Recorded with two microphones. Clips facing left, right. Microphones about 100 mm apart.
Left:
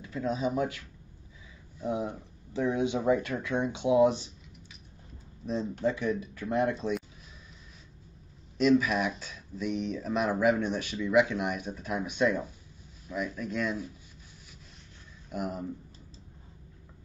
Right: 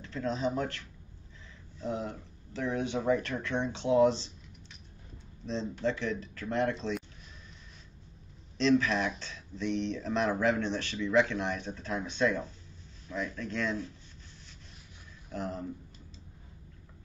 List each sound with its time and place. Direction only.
0.0 s speech: 10° left (ahead or behind)
5.4 s speech: 10° left (ahead or behind)
8.5 s speech: 10° left (ahead or behind)
15.3 s speech: 10° left (ahead or behind)